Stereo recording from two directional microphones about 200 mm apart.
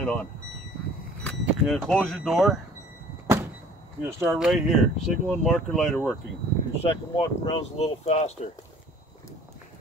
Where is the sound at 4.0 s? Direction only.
10° right (ahead or behind).